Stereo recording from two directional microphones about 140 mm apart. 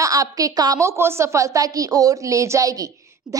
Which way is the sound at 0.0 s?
25° right (ahead or behind).